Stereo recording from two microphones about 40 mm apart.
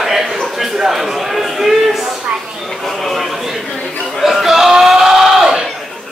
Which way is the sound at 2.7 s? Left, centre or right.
Centre.